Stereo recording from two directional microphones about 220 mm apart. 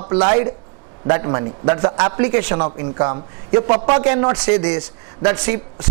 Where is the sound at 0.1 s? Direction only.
20° right (ahead or behind).